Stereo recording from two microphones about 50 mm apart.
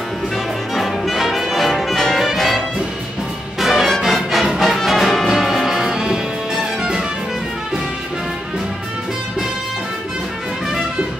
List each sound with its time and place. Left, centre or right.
0.7 s brass instrument: centre
3.5 s music: centre